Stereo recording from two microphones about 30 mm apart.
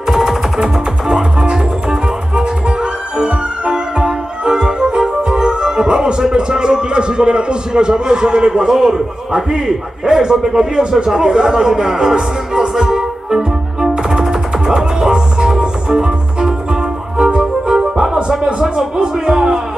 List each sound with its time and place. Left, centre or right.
0.0 s music: centre
1.0 s music: right
11.1 s speech: centre
12.5 s music: right